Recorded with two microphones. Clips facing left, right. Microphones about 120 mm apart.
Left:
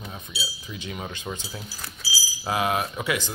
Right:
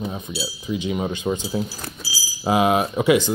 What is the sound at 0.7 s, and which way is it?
Speech, 20° right (ahead or behind).